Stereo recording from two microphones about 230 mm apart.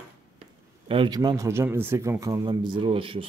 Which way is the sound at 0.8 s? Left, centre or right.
Right.